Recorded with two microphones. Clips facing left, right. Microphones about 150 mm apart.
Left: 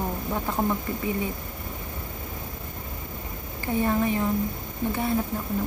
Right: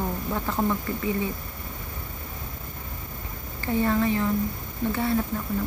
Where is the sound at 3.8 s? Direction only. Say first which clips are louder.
Right 1 dB; 15° left (ahead or behind).